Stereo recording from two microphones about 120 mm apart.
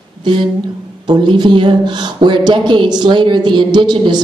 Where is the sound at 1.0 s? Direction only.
40° right (ahead or behind).